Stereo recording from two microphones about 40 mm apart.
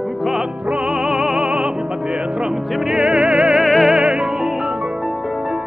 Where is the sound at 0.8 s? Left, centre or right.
Centre.